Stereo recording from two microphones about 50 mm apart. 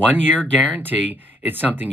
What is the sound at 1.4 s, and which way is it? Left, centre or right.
Speech, right.